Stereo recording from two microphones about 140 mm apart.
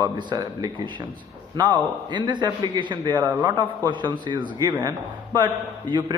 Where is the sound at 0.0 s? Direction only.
30° right (ahead or behind).